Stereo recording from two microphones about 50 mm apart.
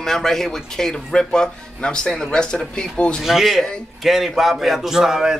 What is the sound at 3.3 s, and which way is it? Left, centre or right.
A man's voice, centre.